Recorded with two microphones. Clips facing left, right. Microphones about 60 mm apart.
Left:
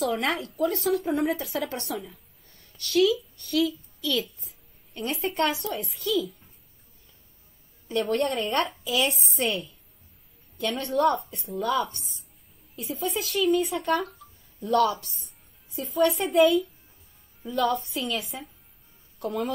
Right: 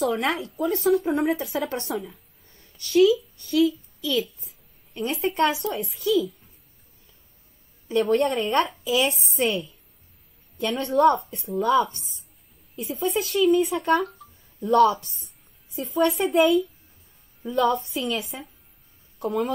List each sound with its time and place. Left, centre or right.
0.0 s a woman's voice: centre
7.9 s a woman's voice: centre
14.6 s a woman's voice: centre
15.1 s speech: centre
17.6 s a woman's voice: right
17.8 s a woman's voice: centre